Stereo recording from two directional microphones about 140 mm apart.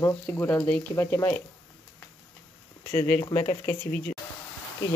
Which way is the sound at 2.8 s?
15° left (ahead or behind).